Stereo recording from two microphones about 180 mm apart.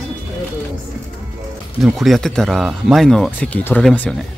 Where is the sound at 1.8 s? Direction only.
Centre (ahead or behind).